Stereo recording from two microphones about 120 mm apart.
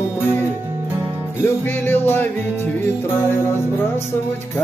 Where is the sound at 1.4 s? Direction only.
20° left (ahead or behind).